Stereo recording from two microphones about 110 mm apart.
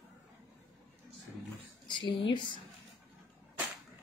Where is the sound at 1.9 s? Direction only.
50° left (ahead or behind).